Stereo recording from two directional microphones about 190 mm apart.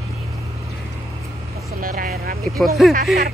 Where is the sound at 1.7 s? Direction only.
50° right (ahead or behind).